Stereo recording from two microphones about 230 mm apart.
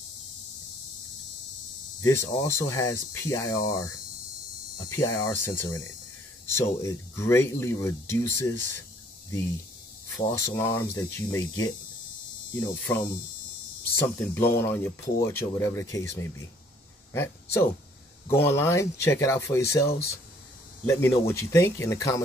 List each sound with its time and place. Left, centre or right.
2.0 s speech: centre
10.1 s speech: centre
14.0 s speech: centre
19.7 s speech: left
20.8 s speech: centre